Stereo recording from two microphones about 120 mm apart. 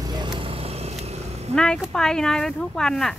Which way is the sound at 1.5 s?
5° left (ahead or behind).